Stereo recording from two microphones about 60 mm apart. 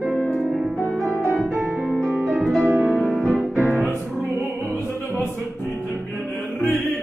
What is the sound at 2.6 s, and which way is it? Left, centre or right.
Music, right.